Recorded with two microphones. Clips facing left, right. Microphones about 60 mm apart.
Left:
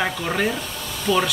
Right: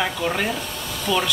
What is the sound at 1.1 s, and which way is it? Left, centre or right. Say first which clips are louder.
Speech: left 2 dB; left.